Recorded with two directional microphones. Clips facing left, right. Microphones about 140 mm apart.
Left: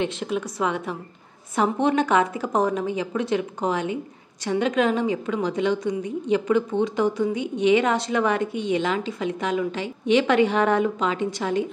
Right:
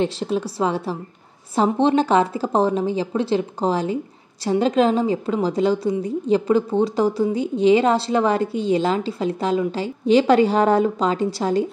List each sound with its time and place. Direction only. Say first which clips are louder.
0.0 s a woman's voice: right 4 dB; 35° right (ahead or behind)